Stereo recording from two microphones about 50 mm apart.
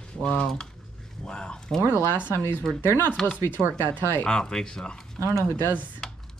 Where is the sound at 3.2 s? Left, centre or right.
Left.